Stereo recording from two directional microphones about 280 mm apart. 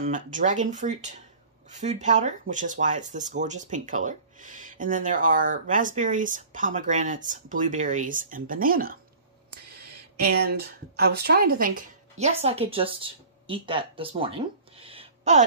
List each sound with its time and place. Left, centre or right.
0.0 s speech: right